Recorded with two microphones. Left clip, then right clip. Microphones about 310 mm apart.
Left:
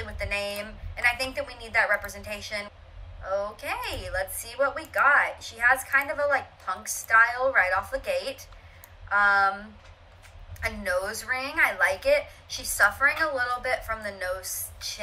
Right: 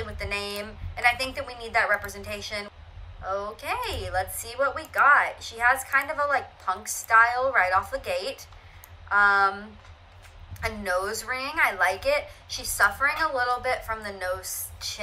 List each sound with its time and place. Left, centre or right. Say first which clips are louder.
0.0 s a woman's voice: left 1 dB; centre
10.6 s a woman's voice: right 1 dB; centre